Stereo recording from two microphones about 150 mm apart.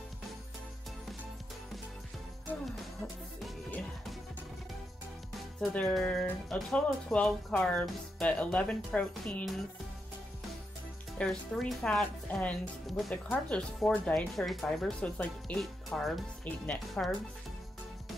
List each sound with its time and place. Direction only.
3.7 s music: centre (ahead or behind)
5.6 s speech: 5° left (ahead or behind)
11.1 s speech: 5° left (ahead or behind)